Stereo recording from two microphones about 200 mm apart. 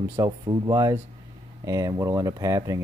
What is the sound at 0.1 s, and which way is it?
Speech, 15° right (ahead or behind).